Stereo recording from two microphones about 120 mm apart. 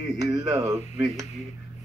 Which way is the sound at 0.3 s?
30° right (ahead or behind).